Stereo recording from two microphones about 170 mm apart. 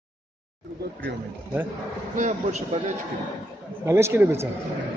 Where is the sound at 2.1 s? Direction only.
45° right (ahead or behind).